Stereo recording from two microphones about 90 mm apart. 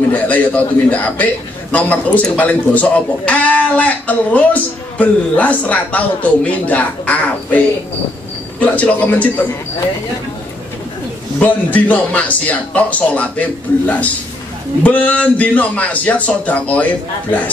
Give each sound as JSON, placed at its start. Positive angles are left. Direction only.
{"t": 0.1, "sound": "speech", "side_deg": 15}
{"t": 11.3, "sound": "speech", "side_deg": 15}
{"t": 14.8, "sound": "speech", "side_deg": 15}